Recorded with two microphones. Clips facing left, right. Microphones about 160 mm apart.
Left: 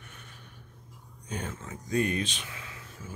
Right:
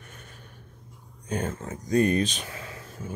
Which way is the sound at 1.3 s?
45° right (ahead or behind).